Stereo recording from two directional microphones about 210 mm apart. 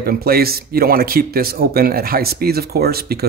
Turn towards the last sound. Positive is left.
turn(degrees=-50)  # may be behind; listen again after turning